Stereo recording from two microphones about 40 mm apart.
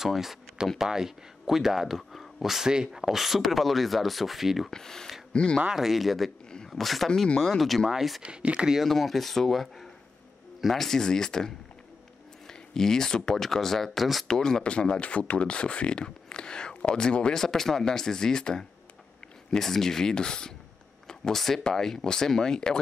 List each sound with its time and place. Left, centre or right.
0.0 s speech: centre
4.6 s speech: centre
5.3 s speech: left
5.8 s speech: centre
8.2 s speech: right
8.8 s speech: centre
14.2 s speech: centre
14.6 s speech: left
17.4 s speech: centre